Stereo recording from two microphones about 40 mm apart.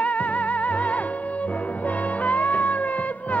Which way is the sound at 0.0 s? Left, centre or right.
Left.